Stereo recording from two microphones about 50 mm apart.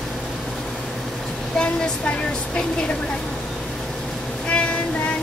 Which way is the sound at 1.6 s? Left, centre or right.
Centre.